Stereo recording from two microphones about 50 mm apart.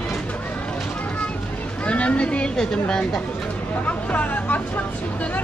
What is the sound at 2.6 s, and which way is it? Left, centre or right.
Speech, centre.